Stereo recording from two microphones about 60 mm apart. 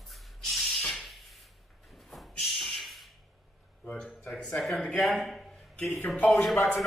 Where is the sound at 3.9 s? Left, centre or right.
Centre.